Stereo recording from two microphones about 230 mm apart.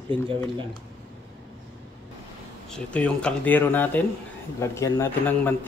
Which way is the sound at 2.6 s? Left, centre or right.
Centre.